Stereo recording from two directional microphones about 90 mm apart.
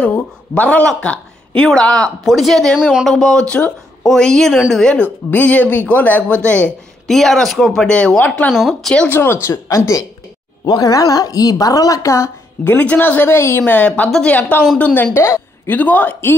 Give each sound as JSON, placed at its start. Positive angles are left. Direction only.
{"t": 0.0, "sound": "a woman's voice", "side_deg": 15}
{"t": 3.2, "sound": "a woman's voice", "side_deg": 10}
{"t": 9.1, "sound": "a woman's voice", "side_deg": 25}
{"t": 12.7, "sound": "speech", "side_deg": 15}
{"t": 15.1, "sound": "a sound", "side_deg": 30}
{"t": 15.7, "sound": "a man's voice", "side_deg": 20}